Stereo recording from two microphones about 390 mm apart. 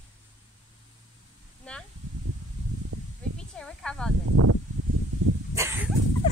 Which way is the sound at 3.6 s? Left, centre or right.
Centre.